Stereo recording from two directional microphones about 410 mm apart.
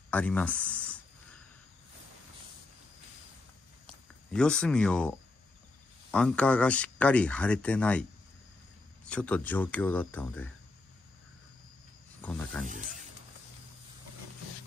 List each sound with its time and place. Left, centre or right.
0.1 s speech: centre
3.8 s speech: centre
6.1 s speech: centre
9.0 s speech: centre
12.2 s speech: centre
12.6 s speech: centre